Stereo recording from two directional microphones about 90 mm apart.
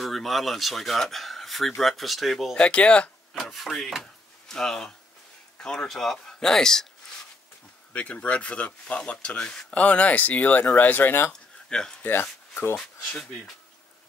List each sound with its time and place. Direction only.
0.0 s speech: centre (ahead or behind)
3.3 s speech: centre (ahead or behind)
7.9 s speech: 15° left (ahead or behind)
11.3 s a sound: 5° left (ahead or behind)
12.0 s speech: 20° left (ahead or behind)